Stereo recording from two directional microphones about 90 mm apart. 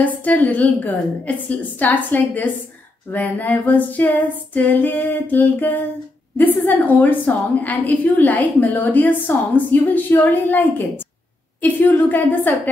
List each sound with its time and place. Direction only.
0.0 s a woman's voice: 15° left (ahead or behind)